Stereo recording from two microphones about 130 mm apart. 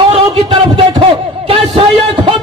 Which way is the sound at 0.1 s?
45° right (ahead or behind).